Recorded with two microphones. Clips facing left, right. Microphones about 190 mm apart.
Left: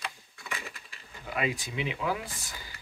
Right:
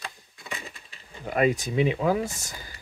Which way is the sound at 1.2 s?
45° right (ahead or behind).